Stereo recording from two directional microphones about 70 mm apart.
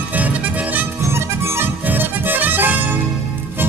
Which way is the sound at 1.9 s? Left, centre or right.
Right.